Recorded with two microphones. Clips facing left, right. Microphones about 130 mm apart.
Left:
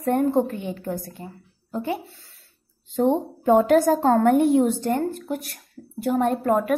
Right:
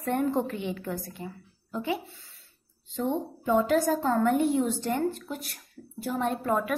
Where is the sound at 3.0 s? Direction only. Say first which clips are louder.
Left 8 dB; 65° left (ahead or behind).